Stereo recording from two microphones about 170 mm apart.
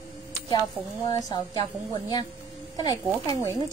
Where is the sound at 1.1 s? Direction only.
20° left (ahead or behind).